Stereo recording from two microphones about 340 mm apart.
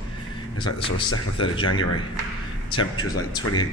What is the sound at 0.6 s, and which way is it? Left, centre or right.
Speech, centre.